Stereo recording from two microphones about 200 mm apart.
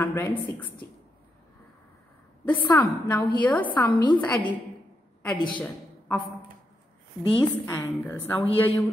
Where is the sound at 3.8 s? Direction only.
20° left (ahead or behind).